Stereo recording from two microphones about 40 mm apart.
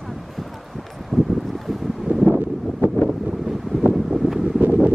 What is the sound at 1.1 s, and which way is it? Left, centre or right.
Boat, centre.